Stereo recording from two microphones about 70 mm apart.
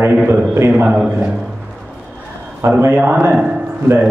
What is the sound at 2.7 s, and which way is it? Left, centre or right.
Speech, right.